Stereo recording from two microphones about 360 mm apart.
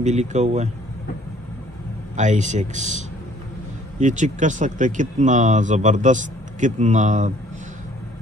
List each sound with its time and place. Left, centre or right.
0.0 s speech: centre
2.1 s speech: centre